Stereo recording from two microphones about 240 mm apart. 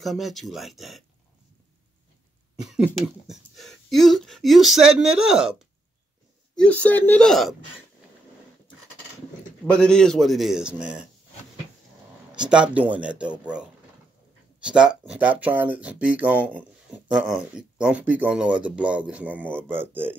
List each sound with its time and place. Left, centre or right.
0.0 s speech: centre
2.6 s speech: centre
9.7 s speech: centre
12.4 s speech: centre